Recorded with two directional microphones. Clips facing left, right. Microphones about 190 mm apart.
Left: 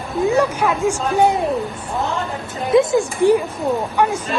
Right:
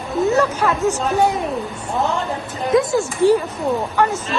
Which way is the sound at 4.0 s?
15° left (ahead or behind).